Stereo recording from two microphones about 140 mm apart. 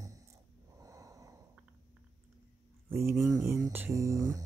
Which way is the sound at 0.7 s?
25° right (ahead or behind).